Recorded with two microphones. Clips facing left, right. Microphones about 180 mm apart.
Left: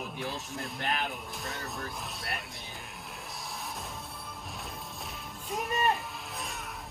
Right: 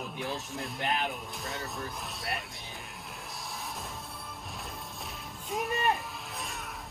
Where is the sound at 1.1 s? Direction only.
Centre (ahead or behind).